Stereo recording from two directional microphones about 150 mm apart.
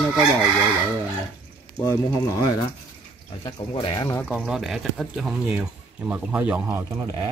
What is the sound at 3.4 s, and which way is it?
Speech, 35° left (ahead or behind).